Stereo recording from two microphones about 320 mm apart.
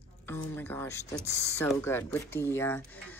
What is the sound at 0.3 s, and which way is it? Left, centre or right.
Speech, centre.